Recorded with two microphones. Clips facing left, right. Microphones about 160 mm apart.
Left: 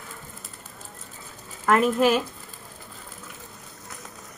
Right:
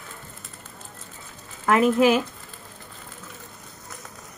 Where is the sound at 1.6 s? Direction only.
Centre (ahead or behind).